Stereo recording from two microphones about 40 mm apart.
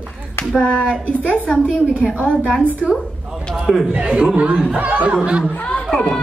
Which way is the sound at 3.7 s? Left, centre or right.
Centre.